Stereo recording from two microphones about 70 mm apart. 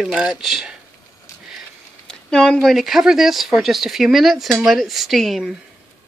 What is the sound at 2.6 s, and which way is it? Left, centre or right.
Speech, centre.